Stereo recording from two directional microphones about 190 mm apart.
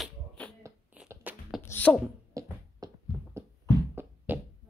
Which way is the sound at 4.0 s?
10° right (ahead or behind).